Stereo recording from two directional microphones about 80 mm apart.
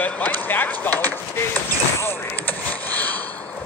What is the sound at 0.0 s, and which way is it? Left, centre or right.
Basketball bounce, left.